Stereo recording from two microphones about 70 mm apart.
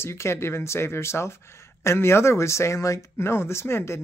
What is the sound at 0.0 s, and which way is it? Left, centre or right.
Speech, left.